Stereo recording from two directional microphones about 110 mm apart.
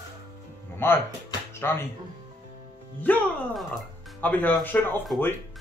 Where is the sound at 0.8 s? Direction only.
20° left (ahead or behind).